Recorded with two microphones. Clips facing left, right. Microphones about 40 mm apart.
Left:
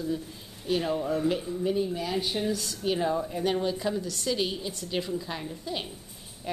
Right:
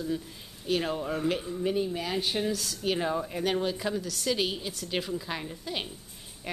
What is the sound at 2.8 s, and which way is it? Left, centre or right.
Speech, centre.